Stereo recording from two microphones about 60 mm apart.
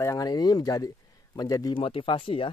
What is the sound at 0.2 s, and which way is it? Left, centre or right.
Speech, left.